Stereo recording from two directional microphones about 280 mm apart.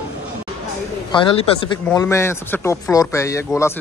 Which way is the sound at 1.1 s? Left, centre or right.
Centre.